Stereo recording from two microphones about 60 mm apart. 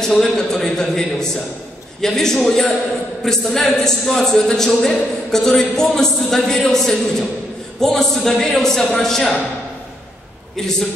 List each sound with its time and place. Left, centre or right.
0.0 s a man's voice: centre